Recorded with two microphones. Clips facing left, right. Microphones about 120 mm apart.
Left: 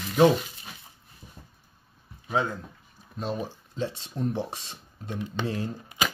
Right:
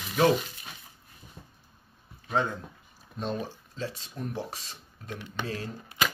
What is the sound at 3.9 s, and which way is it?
Speech, 25° left (ahead or behind).